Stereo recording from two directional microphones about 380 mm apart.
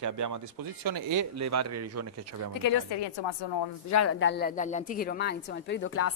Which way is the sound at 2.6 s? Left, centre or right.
Left.